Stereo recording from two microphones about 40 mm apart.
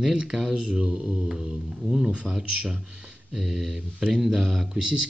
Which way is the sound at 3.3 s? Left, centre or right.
Centre.